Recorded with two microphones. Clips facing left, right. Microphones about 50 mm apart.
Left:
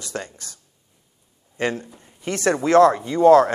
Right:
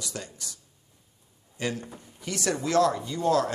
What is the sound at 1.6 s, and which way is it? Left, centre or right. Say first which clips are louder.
Speech: left 7 dB; left.